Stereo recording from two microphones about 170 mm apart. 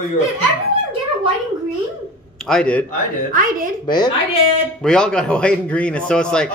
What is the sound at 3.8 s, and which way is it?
Speech, 25° left (ahead or behind).